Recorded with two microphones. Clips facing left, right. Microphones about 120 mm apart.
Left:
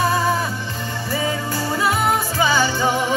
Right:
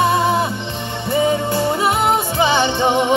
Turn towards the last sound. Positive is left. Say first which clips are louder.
# right 3 dB
turn(degrees=-25)  # may be behind; listen again after turning